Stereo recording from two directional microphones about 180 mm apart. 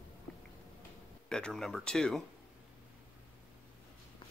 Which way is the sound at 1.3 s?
5° left (ahead or behind).